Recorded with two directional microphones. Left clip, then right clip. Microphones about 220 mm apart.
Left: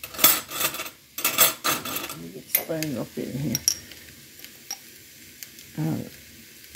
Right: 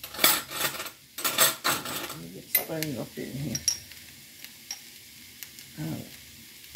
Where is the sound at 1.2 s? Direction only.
30° left (ahead or behind).